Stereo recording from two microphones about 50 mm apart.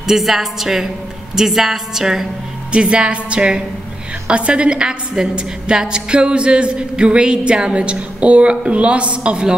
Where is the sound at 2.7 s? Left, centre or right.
Right.